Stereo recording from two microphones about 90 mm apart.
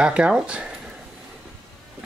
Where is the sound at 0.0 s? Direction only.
10° right (ahead or behind).